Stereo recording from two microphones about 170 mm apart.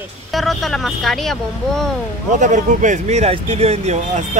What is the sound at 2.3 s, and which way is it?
Speech, 45° right (ahead or behind).